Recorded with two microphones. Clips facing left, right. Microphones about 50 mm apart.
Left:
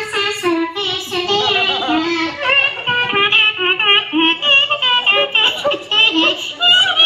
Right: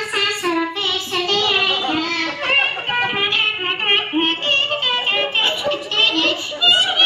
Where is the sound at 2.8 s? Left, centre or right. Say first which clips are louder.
Left 4 dB; left.